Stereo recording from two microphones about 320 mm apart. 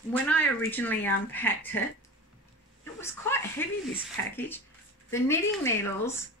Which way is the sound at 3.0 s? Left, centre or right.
Centre.